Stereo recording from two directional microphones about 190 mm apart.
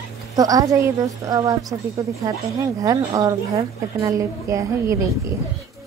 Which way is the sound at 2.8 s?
20° right (ahead or behind).